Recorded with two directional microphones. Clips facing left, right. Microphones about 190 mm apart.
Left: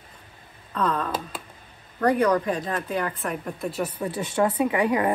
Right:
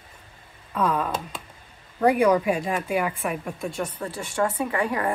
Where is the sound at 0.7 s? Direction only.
10° right (ahead or behind).